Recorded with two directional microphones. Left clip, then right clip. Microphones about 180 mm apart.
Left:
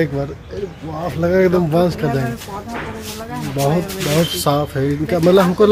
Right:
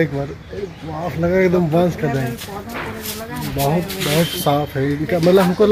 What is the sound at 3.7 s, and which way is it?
Speech, 20° left (ahead or behind).